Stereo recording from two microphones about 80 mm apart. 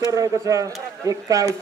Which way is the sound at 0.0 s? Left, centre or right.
Right.